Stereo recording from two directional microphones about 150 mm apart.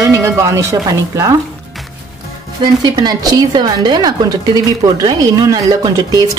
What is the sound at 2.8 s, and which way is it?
A woman's voice, 30° right (ahead or behind).